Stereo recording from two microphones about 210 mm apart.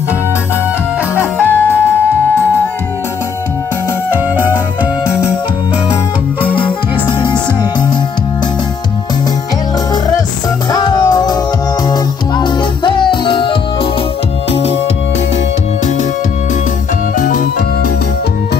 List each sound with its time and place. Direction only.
1.1 s music: 10° left (ahead or behind)
6.4 s music: 25° left (ahead or behind)
10.7 s music: 20° left (ahead or behind)
17.2 s music: 45° left (ahead or behind)